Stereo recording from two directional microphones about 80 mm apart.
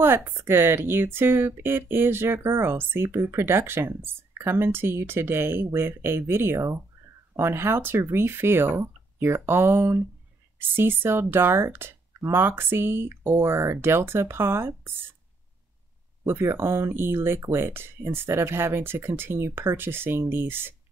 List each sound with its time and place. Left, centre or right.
0.0 s speech: right
16.3 s speech: right